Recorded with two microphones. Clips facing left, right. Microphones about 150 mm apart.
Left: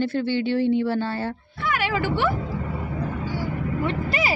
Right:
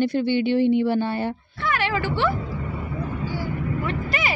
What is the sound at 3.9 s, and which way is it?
Vehicle, 30° left (ahead or behind).